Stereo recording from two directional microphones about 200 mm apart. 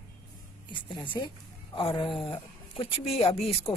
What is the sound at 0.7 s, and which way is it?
A woman's voice, 25° left (ahead or behind).